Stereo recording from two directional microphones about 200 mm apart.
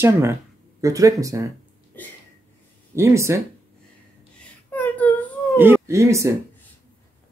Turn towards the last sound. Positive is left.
turn(degrees=-15)  # may be behind; listen again after turning